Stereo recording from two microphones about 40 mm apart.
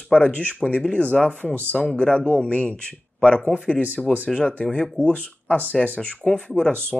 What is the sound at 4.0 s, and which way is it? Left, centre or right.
Speech, centre.